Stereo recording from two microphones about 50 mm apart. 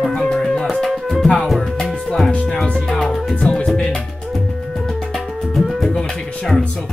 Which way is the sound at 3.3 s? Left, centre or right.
Left.